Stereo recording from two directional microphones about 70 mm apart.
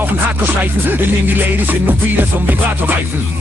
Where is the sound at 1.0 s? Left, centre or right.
Right.